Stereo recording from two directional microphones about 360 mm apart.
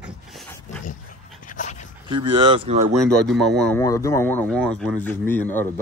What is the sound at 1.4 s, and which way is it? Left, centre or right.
Dog, left.